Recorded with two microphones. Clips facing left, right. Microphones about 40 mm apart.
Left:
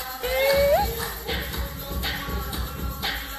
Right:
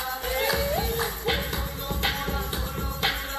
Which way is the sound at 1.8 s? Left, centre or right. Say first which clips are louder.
Right 3 dB; right.